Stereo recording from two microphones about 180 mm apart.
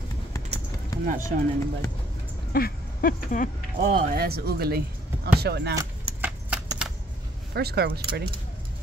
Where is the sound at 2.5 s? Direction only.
55° left (ahead or behind).